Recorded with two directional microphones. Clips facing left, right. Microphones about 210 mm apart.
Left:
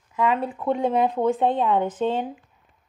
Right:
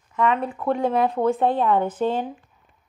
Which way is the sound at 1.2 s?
20° left (ahead or behind).